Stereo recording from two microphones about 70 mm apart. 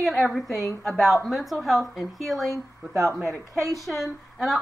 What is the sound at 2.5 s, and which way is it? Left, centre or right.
Speech, right.